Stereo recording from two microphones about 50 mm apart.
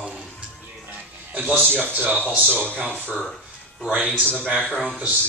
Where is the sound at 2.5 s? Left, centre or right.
Centre.